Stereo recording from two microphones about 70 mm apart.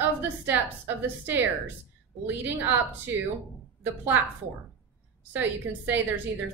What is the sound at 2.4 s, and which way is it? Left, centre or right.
Speech, right.